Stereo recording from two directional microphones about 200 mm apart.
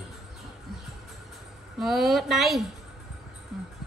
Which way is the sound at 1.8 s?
Centre (ahead or behind).